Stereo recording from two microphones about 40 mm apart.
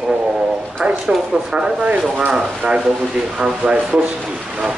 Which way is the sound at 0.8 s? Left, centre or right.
Right.